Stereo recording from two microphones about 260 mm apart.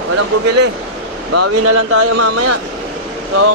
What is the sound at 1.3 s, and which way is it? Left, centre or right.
Speech, right.